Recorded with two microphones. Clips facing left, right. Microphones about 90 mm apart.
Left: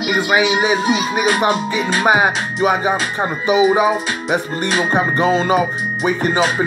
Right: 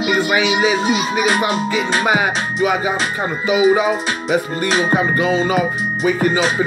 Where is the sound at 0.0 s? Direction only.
15° left (ahead or behind).